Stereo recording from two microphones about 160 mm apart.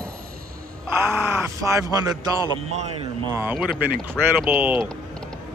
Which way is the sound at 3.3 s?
10° right (ahead or behind).